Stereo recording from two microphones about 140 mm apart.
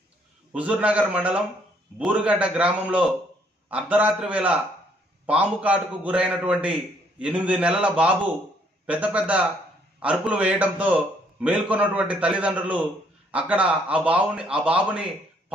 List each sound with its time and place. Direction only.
0.5 s a man's voice: 10° right (ahead or behind)